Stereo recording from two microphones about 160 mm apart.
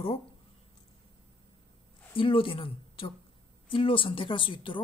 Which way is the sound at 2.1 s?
35° left (ahead or behind).